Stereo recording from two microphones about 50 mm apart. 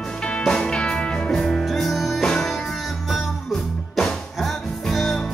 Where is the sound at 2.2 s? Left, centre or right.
Centre.